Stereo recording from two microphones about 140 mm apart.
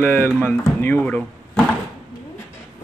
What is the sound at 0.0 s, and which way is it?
Speech, 15° left (ahead or behind).